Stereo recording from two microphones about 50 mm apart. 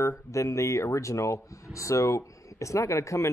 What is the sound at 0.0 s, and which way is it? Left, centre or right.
A man's voice, left.